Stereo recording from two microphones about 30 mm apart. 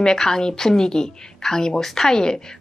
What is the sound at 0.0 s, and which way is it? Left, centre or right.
A woman's voice, centre.